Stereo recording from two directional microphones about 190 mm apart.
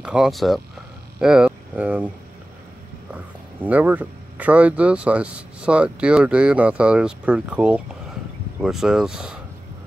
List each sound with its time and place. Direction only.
0.0 s speech: 5° right (ahead or behind)
1.2 s a sound: 5° right (ahead or behind)
3.6 s speech: 10° right (ahead or behind)